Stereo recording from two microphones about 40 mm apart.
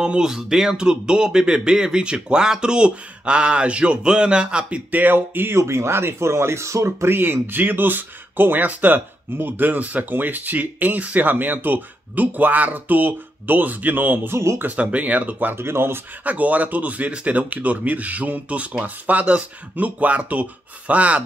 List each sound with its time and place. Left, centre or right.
0.0 s speech: centre
4.9 s speech: right
7.1 s speech: right
14.7 s speech: right
15.5 s speech: right
16.3 s speech: right